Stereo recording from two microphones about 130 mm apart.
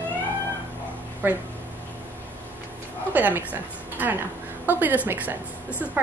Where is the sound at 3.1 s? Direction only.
15° right (ahead or behind).